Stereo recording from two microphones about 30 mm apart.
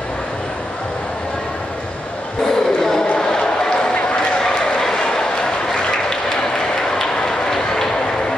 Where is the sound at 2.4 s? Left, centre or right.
Centre.